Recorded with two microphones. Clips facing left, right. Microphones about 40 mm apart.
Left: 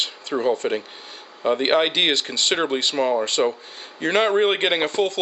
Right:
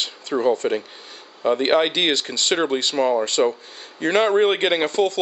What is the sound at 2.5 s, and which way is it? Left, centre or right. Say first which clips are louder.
Speech: right 2 dB; centre.